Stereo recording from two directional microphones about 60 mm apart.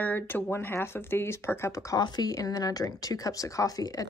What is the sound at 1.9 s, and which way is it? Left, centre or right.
Speech, left.